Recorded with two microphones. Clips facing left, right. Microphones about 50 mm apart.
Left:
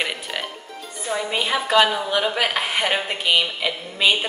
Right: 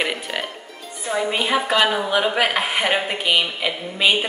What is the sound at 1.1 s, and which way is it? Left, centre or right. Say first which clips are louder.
Speech: right 3 dB; centre.